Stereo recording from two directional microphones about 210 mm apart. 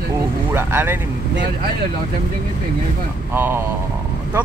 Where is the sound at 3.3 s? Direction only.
10° right (ahead or behind).